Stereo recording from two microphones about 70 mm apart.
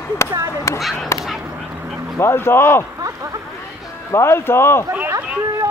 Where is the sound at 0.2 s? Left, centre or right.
Left.